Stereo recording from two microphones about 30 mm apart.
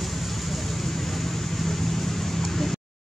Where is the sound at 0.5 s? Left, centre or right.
Centre.